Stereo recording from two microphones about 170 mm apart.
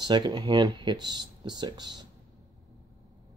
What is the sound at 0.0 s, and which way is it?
Speech, 25° right (ahead or behind).